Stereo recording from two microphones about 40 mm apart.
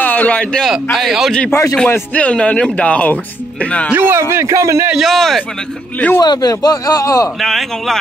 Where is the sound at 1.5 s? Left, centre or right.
Left.